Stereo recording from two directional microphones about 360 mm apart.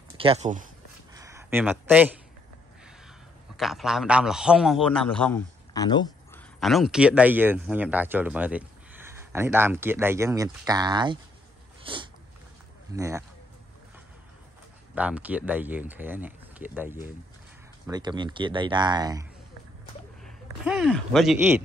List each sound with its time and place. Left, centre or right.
0.2 s speech: centre
1.1 s a sound: centre
3.5 s a man's voice: centre
6.6 s speech: centre
11.8 s a sound: centre
12.9 s speech: centre
15.0 s speech: centre
20.6 s speech: centre